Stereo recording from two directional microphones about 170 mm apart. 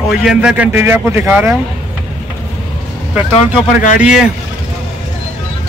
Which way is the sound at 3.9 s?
5° right (ahead or behind).